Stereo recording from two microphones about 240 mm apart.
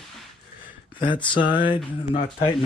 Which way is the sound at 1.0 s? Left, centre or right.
Centre.